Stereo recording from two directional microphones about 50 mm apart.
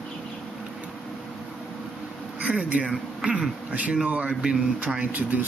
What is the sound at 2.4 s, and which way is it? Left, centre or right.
A man's voice, right.